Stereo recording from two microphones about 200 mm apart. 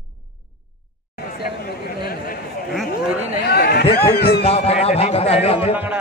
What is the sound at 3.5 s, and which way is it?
Chatter, 50° left (ahead or behind).